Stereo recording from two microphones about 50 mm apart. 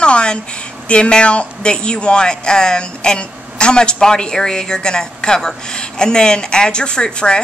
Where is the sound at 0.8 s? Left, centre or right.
Left.